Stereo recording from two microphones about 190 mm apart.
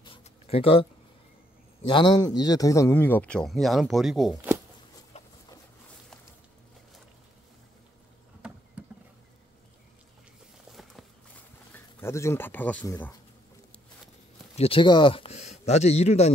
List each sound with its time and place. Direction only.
0.0 s a sound: 30° left (ahead or behind)
1.9 s speech: 25° left (ahead or behind); by 4.4 s centre (ahead or behind)
5.1 s chicken: 35° left (ahead or behind)
8.4 s vehicle: 5° right (ahead or behind)
10.7 s walk: centre (ahead or behind)
11.7 s speech: 15° left (ahead or behind)
14.6 s speech: 25° left (ahead or behind)